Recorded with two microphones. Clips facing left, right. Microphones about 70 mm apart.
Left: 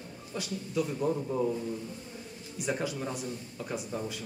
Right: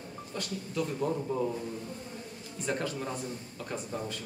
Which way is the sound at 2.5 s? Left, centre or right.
Centre.